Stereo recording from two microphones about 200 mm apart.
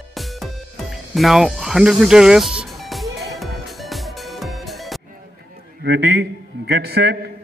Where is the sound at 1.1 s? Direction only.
Centre (ahead or behind).